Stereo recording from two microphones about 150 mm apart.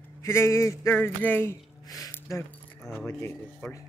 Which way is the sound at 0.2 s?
20° left (ahead or behind).